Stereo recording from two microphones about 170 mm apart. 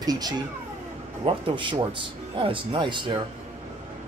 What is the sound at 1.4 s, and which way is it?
Speech, 30° right (ahead or behind).